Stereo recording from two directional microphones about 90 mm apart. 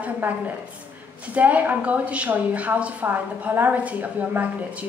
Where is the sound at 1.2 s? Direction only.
15° right (ahead or behind).